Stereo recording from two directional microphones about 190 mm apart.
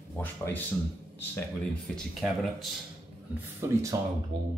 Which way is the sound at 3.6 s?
15° right (ahead or behind).